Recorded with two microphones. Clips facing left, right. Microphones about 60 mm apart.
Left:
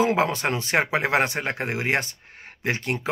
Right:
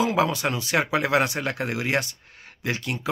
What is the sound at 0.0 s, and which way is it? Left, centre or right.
Speech, left.